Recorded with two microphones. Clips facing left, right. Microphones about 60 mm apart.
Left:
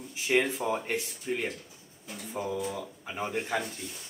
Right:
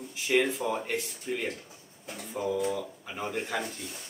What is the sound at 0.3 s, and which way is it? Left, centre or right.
Speech, centre.